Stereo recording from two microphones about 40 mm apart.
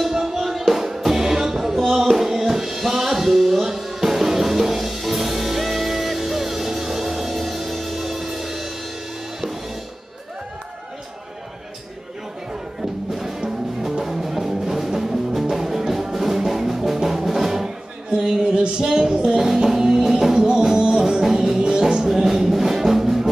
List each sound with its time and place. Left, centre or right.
0.0 s music: centre
13.1 s music: centre
18.1 s a sound: centre
19.3 s music: centre